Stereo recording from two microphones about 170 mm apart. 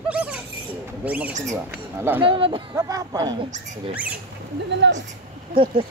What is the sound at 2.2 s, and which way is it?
Speech, 30° right (ahead or behind).